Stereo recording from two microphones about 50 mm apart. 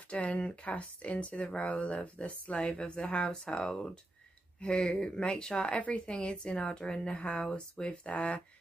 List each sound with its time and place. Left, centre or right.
0.1 s speech: left